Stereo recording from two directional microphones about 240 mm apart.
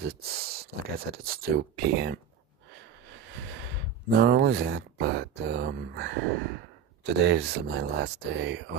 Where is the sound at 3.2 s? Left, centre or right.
Right.